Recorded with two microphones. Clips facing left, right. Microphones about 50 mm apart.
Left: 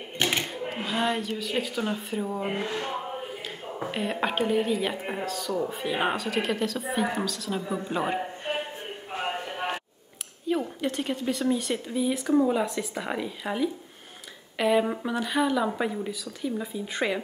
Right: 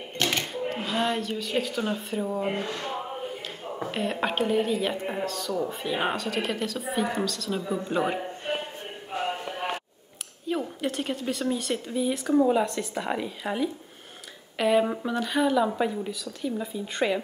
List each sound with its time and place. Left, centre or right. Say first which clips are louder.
0.2 s a sound: even; centre
1.4 s speech: right 1 dB; centre
2.5 s speech: left 1 dB; centre
3.9 s speech: even; centre
10.5 s speech: left 1 dB; centre